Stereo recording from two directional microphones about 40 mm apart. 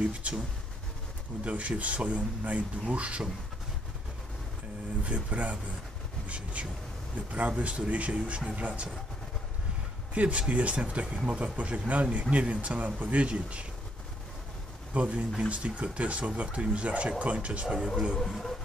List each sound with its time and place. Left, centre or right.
0.0 s speech: right
1.4 s speech: right
5.0 s speech: right
10.1 s speech: right
15.0 s speech: right
18.2 s speech: centre